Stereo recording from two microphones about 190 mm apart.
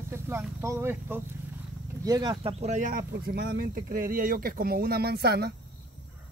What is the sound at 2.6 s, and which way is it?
Speech, 40° right (ahead or behind).